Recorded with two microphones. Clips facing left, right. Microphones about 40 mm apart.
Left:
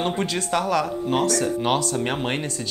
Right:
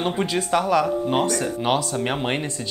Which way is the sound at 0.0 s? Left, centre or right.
Centre.